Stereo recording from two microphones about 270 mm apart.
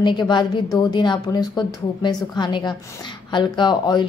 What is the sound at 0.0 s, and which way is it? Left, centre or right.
A woman's voice, centre.